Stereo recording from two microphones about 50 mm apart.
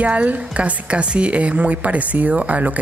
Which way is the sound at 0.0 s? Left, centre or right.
Right.